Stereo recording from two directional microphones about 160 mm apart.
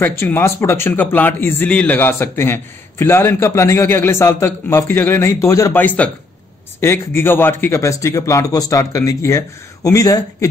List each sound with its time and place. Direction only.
0.0 s speech: 15° left (ahead or behind)